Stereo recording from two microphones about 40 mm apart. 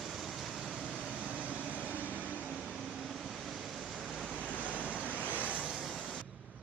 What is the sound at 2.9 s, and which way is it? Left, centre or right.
Vehicle, centre.